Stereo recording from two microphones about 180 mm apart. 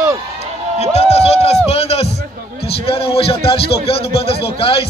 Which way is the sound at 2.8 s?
30° left (ahead or behind).